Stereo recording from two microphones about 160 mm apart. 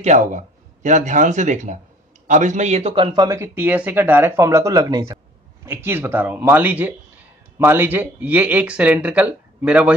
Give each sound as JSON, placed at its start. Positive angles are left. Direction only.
{"t": 0.0, "sound": "speech", "side_deg": -50}